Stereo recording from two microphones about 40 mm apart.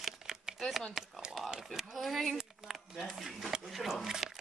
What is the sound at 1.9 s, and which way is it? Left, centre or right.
Speech, centre.